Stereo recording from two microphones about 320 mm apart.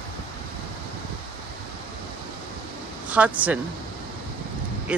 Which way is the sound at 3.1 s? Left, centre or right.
Centre.